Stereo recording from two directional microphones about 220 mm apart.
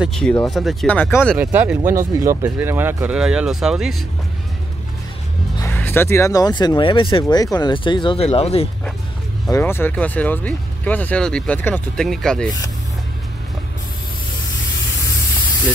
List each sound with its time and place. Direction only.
0.0 s speech: centre (ahead or behind)
1.4 s speech: 5° right (ahead or behind)
5.6 s speech: 10° left (ahead or behind); by 8.6 s 30° left (ahead or behind)
9.5 s speech: 10° left (ahead or behind)